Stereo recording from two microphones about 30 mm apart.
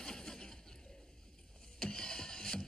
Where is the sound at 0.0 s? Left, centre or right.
Left.